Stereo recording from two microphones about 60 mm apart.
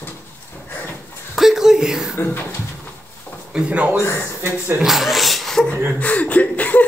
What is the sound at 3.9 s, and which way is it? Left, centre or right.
Speech, left.